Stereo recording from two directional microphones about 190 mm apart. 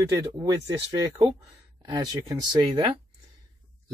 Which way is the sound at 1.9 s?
20° right (ahead or behind).